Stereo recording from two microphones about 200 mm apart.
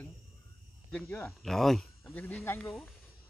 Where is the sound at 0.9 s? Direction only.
10° left (ahead or behind).